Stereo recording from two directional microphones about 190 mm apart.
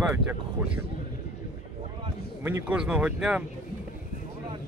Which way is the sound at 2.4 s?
10° right (ahead or behind).